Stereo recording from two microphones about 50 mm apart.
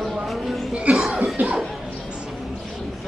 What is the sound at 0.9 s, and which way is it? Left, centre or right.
Music, right.